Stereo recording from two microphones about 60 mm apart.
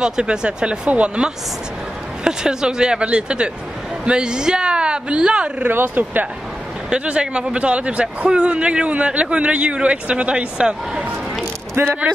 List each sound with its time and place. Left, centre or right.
0.0 s speech: centre
5.7 s speech: right
6.9 s a man's voice: centre
11.7 s speech: right